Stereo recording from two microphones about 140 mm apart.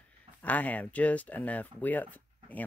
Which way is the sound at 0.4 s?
10° left (ahead or behind).